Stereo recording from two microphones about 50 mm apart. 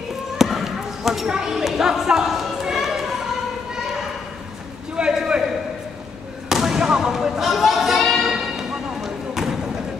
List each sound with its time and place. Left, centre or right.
0.4 s basketball bounce: centre
1.3 s speech: centre
2.6 s a sound: centre
4.9 s a sound: centre
6.5 s basketball bounce: centre
8.2 s music: centre